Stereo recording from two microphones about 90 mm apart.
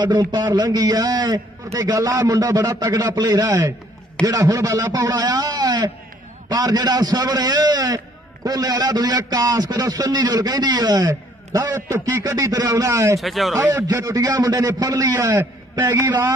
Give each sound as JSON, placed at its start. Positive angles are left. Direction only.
{"t": 0.0, "sound": "a man's voice", "side_deg": -55}
{"t": 3.4, "sound": "a man's voice", "side_deg": -35}
{"t": 13.2, "sound": "speech", "side_deg": 0}
{"t": 13.6, "sound": "speech", "side_deg": -20}
{"t": 13.9, "sound": "a man's voice", "side_deg": -40}